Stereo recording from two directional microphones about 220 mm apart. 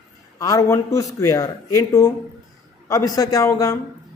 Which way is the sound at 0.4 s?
15° left (ahead or behind).